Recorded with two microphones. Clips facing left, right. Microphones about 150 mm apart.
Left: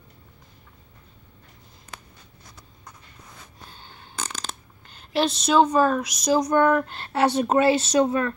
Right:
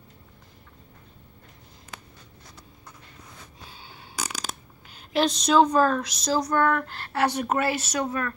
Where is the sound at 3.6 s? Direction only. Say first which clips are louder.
Even; 5° right (ahead or behind); by 8.3 s 25° left (ahead or behind).